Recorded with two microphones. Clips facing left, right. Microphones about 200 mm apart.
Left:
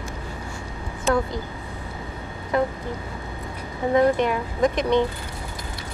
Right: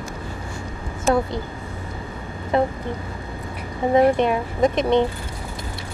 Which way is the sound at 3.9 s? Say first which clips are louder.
Right 2 dB; 20° right (ahead or behind).